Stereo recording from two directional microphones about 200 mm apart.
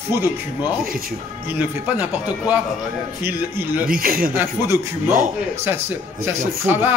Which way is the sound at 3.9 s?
45° right (ahead or behind).